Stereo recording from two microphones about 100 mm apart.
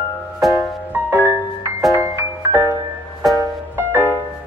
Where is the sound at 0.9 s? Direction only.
25° right (ahead or behind).